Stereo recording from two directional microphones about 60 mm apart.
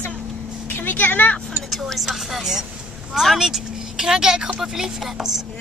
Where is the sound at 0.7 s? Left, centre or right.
Left.